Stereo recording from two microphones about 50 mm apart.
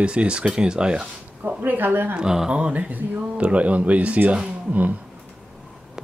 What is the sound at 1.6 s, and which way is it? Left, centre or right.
Speech, right.